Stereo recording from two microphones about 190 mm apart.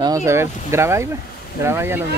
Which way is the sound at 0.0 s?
15° right (ahead or behind).